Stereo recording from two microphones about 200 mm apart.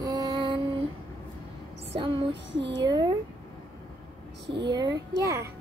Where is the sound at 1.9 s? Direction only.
25° right (ahead or behind).